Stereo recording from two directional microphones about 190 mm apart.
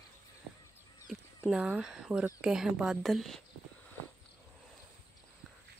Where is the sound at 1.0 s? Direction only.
Centre (ahead or behind).